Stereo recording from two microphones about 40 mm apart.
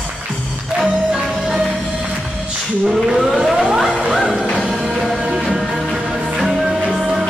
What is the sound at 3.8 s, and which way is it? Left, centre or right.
Music, centre.